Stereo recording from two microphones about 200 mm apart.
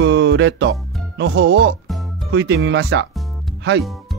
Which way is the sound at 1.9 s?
Centre (ahead or behind).